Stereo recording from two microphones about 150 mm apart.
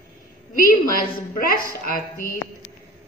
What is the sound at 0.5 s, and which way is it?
A woman's voice, 70° left (ahead or behind).